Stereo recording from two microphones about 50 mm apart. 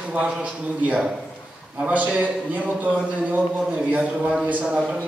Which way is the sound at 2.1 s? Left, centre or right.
Right.